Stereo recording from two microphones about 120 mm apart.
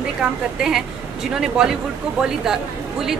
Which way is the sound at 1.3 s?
5° right (ahead or behind).